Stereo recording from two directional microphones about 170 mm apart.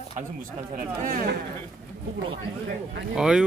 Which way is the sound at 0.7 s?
50° right (ahead or behind).